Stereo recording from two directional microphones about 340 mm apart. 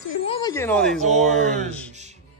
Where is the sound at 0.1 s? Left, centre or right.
Centre.